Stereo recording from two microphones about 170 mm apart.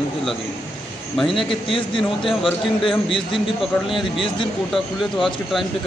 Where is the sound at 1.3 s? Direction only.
30° left (ahead or behind).